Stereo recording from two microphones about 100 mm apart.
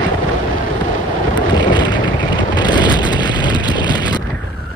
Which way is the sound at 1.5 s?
50° left (ahead or behind).